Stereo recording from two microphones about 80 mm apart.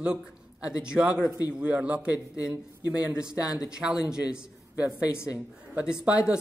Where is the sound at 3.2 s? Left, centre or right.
Centre.